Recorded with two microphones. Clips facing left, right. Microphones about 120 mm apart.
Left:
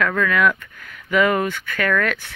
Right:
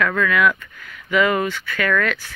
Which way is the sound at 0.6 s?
45° left (ahead or behind).